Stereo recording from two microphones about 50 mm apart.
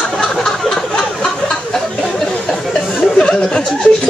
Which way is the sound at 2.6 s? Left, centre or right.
Centre.